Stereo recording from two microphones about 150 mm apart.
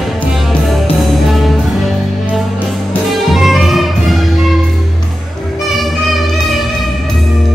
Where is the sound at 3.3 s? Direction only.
Centre (ahead or behind).